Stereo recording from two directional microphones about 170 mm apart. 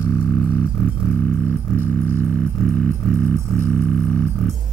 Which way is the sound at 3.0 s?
5° left (ahead or behind).